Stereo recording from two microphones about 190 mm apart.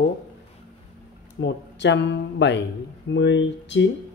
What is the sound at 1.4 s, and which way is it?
Speech, 70° left (ahead or behind).